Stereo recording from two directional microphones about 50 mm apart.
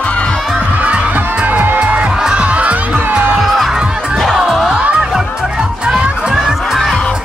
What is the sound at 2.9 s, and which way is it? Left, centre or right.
Music, right.